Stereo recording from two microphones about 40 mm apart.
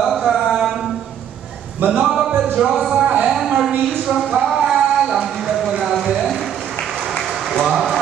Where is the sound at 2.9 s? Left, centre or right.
Right.